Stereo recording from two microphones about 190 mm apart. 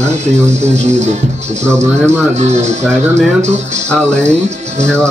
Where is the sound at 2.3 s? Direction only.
35° right (ahead or behind).